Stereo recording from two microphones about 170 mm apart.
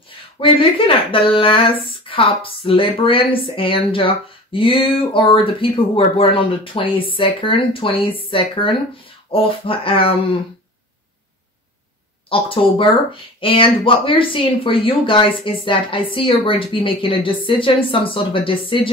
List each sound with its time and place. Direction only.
0.4 s speech: 30° left (ahead or behind)
12.3 s speech: 30° left (ahead or behind)